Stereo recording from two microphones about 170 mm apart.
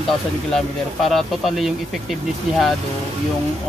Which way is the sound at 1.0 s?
Centre (ahead or behind).